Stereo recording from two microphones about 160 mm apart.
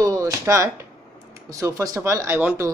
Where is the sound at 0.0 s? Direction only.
20° right (ahead or behind).